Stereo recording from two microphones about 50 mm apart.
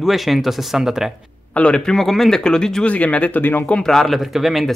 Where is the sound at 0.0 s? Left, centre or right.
Centre.